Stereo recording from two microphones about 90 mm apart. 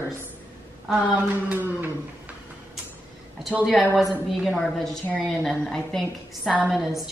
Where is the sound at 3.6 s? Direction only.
Centre (ahead or behind).